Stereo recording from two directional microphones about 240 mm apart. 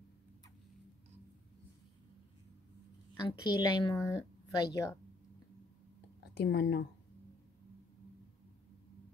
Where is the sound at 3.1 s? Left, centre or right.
Centre.